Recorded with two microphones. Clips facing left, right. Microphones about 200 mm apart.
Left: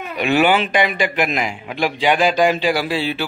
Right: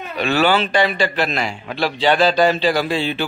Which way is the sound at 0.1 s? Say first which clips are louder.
Left 1 dB; 15° left (ahead or behind).